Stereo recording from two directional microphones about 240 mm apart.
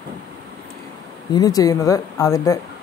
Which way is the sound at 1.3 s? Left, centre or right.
Centre.